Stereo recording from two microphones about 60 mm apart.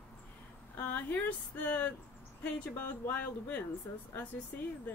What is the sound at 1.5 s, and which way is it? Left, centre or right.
Speech, left.